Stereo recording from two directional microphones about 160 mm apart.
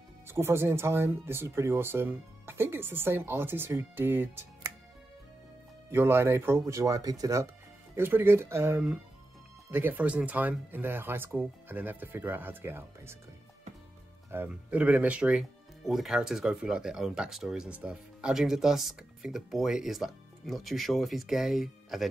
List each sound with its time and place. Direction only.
0.3 s speech: 15° right (ahead or behind)
5.9 s speech: 15° right (ahead or behind)
14.3 s speech: 10° right (ahead or behind)